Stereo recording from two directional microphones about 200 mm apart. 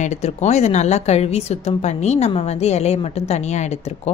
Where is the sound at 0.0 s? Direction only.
35° left (ahead or behind).